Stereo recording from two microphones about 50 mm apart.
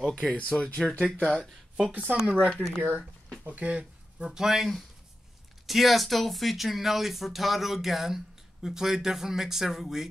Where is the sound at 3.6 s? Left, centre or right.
Right.